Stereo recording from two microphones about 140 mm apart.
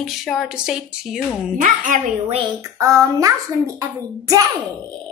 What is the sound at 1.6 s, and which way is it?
Speech, 70° right (ahead or behind).